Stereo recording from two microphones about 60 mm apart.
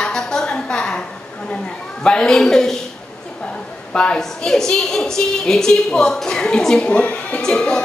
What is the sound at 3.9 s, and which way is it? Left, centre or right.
A woman's voice, centre.